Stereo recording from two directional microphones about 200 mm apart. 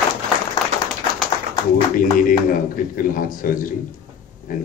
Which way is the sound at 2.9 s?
45° left (ahead or behind).